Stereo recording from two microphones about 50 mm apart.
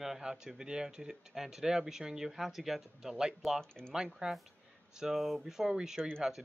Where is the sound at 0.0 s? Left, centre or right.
Centre.